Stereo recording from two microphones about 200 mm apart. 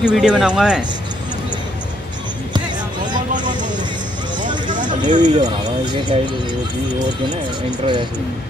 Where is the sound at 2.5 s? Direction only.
20° right (ahead or behind).